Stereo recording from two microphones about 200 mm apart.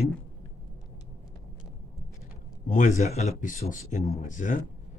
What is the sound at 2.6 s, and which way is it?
A man's voice, 40° left (ahead or behind).